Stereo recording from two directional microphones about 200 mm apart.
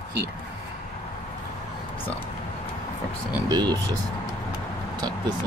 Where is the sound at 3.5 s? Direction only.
20° right (ahead or behind).